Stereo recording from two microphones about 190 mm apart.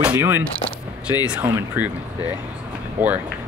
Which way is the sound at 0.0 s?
10° right (ahead or behind).